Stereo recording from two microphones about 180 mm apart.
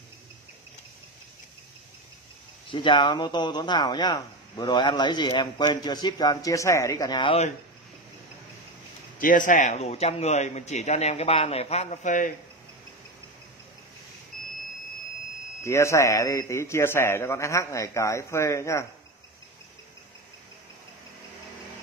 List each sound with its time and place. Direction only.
2.7 s speech: 25° left (ahead or behind)
9.2 s speech: 45° left (ahead or behind)
15.6 s a man's voice: 15° left (ahead or behind)